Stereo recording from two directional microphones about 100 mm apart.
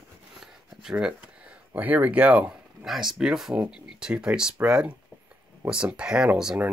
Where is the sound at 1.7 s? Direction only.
15° right (ahead or behind).